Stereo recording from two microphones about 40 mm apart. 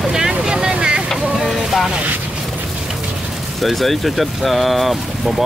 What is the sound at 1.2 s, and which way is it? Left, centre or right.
Vehicle, centre.